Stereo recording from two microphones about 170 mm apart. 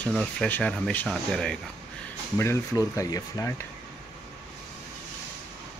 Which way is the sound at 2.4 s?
15° left (ahead or behind).